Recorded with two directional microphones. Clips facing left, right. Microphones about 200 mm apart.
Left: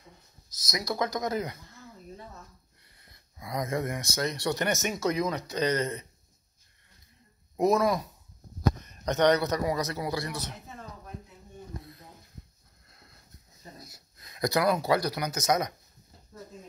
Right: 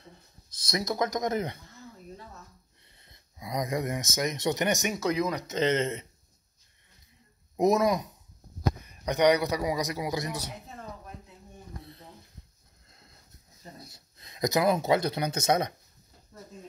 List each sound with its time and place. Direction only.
0.7 s speech: 25° right (ahead or behind)
3.0 s speech: 20° right (ahead or behind)
7.5 s a man's voice: 20° right (ahead or behind)
13.8 s speech: 25° right (ahead or behind)